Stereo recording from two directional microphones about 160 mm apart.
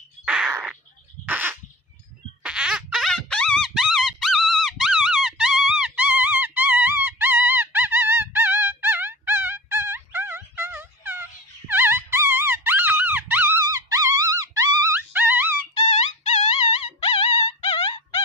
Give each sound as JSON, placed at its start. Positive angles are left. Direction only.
{"t": 0.2, "sound": "bird", "side_deg": -5}
{"t": 1.2, "sound": "crow", "side_deg": -10}
{"t": 2.4, "sound": "a sound", "side_deg": -5}
{"t": 13.7, "sound": "wail", "side_deg": -20}
{"t": 17.0, "sound": "music", "side_deg": 35}